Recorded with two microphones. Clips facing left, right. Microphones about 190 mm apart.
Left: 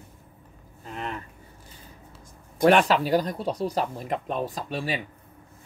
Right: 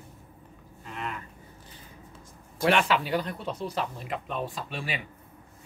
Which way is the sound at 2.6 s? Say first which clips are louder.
Left 5 dB; 35° left (ahead or behind).